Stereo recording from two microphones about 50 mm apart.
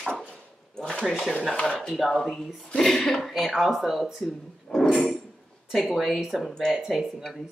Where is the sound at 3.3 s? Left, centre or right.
Centre.